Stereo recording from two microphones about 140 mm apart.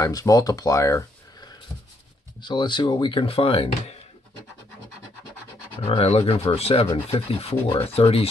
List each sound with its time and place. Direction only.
0.0 s speech: 25° left (ahead or behind)
2.4 s speech: 35° left (ahead or behind)
5.9 s speech: 45° left (ahead or behind)